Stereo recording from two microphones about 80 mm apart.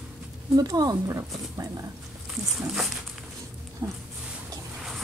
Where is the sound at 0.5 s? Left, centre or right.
Right.